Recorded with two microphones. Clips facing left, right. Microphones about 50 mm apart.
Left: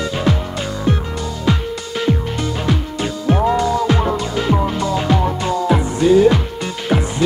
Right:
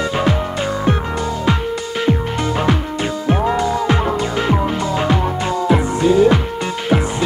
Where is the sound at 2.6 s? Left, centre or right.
Right.